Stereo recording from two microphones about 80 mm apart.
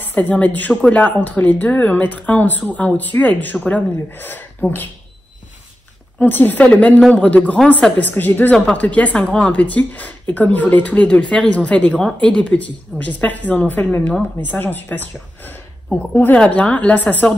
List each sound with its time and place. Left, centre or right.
0.0 s speech: left
6.1 s a woman's voice: left